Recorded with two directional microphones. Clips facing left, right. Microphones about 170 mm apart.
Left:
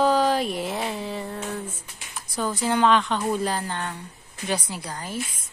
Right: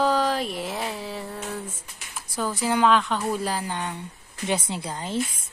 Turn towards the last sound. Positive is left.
turn(degrees=-25)  # may be behind; listen again after turning